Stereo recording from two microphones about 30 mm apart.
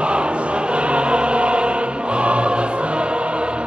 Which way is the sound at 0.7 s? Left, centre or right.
Right.